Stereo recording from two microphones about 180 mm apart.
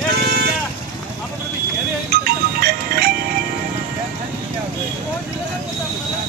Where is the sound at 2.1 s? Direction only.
55° right (ahead or behind).